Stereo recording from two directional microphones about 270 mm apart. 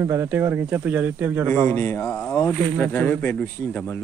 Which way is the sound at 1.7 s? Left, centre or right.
Centre.